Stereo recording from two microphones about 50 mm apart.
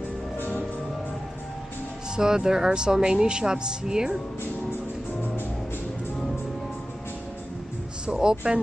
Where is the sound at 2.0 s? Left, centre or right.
Centre.